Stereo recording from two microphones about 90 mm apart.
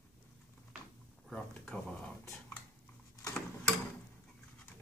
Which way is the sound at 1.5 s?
15° left (ahead or behind).